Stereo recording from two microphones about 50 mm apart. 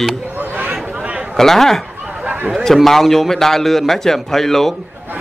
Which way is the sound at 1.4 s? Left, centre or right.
Centre.